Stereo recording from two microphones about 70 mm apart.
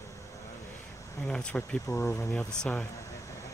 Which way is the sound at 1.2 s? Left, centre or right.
Centre.